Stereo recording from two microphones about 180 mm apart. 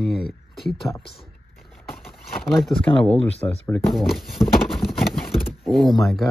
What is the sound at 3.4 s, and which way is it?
Speech, 20° left (ahead or behind).